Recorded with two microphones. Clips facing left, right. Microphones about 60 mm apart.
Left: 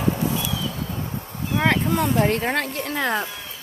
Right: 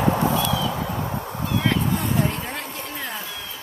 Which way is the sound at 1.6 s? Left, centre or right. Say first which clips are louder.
Left 5 dB; left.